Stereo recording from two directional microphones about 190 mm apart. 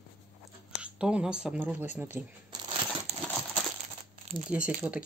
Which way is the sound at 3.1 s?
35° right (ahead or behind).